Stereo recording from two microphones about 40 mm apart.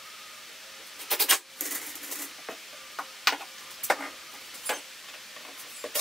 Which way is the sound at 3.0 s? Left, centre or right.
Centre.